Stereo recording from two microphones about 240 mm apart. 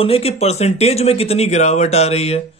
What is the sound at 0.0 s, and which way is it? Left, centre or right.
Speech, left.